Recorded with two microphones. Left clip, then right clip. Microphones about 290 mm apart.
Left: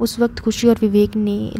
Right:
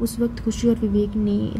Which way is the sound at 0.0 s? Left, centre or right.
Left.